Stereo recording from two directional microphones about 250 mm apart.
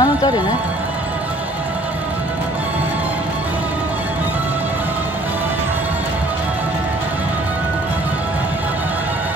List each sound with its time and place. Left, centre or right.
0.0 s music: centre